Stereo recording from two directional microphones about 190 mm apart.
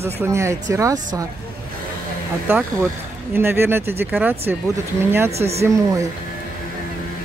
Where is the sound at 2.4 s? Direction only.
10° right (ahead or behind).